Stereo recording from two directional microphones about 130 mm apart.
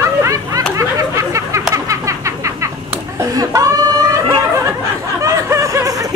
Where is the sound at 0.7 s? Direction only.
25° right (ahead or behind).